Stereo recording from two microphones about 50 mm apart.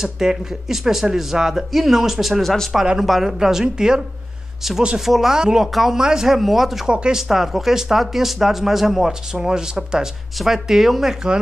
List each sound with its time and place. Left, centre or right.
0.0 s speech: centre
6.9 s speech: centre
7.2 s speech: centre